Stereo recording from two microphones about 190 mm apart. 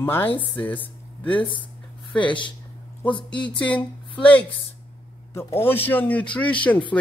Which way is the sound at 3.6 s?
5° left (ahead or behind).